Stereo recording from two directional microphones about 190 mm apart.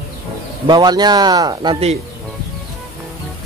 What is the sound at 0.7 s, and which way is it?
Speech, 20° right (ahead or behind).